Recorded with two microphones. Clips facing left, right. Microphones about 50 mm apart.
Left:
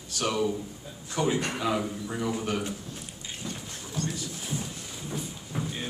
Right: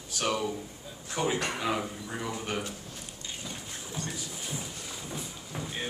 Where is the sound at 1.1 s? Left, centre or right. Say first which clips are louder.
Left 2 dB; centre.